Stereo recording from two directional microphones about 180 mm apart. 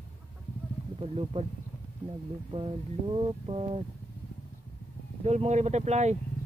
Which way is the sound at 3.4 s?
30° right (ahead or behind).